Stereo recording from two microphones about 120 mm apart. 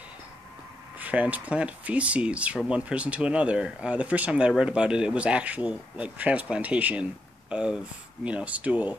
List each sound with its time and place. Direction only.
0.9 s speech: 10° right (ahead or behind)